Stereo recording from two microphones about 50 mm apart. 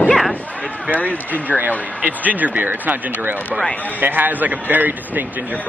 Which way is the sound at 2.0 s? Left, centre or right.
Right.